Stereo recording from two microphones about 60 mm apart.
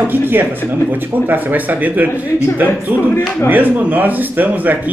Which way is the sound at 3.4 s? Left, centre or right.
Right.